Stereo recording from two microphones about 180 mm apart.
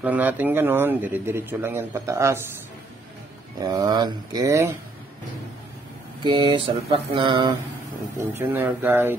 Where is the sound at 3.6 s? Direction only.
20° right (ahead or behind).